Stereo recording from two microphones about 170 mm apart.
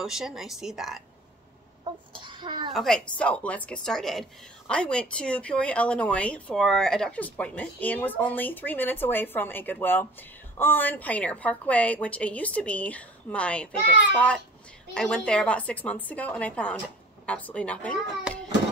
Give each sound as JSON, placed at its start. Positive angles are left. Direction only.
{"t": 0.0, "sound": "a woman's voice", "side_deg": -5}
{"t": 1.9, "sound": "a sound", "side_deg": -30}
{"t": 2.7, "sound": "a woman's voice", "side_deg": 0}
{"t": 15.0, "sound": "a woman's voice", "side_deg": 5}